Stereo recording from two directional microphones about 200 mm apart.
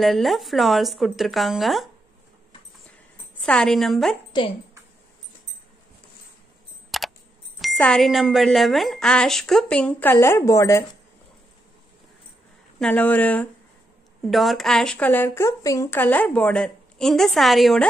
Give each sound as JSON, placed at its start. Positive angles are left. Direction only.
{"t": 0.0, "sound": "speech", "side_deg": 0}
{"t": 3.4, "sound": "speech", "side_deg": 0}
{"t": 4.3, "sound": "a woman's voice", "side_deg": 20}
{"t": 6.9, "sound": "a sound", "side_deg": 0}
{"t": 7.6, "sound": "speech", "side_deg": 5}
{"t": 12.7, "sound": "speech", "side_deg": 5}